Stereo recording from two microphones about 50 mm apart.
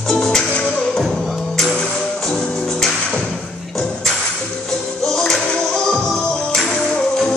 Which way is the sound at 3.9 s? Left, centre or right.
Centre.